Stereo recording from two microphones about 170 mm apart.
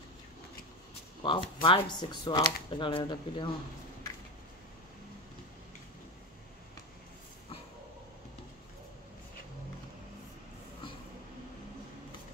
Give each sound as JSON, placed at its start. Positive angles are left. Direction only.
{"t": 1.2, "sound": "speech", "side_deg": 30}